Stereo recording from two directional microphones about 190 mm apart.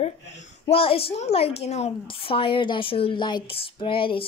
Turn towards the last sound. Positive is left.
turn(degrees=25)  # may be behind; listen again after turning